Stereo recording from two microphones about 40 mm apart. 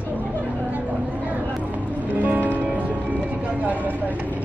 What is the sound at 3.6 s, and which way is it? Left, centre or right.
Vehicle, right.